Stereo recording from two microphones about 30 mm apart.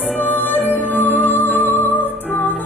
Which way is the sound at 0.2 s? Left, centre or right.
Left.